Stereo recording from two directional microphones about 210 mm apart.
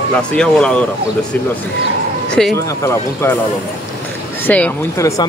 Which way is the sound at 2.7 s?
15° left (ahead or behind).